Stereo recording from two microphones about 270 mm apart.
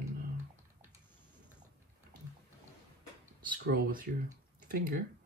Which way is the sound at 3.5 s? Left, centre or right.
Right.